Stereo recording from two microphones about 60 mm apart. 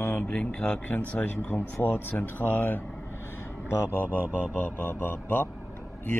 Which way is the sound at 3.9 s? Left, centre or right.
Left.